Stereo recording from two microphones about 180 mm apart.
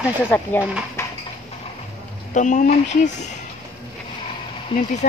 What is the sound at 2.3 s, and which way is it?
Speech, 45° left (ahead or behind).